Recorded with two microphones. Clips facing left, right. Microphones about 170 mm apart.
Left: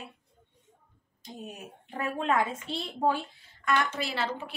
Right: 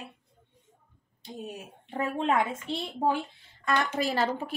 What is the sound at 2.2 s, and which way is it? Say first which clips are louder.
A woman's voice: even; 20° right (ahead or behind).